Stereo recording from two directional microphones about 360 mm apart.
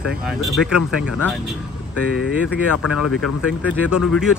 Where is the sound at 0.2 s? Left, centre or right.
Centre.